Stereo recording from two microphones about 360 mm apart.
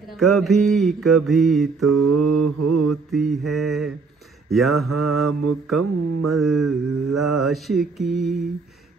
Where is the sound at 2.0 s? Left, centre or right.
Right.